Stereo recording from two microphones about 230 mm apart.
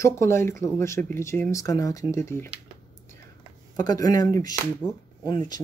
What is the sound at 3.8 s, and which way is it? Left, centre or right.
Speech, centre.